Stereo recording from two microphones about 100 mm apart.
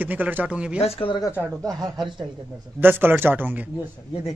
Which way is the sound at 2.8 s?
20° right (ahead or behind).